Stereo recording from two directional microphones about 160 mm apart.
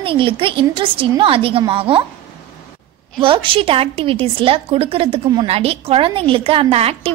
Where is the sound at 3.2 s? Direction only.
35° right (ahead or behind).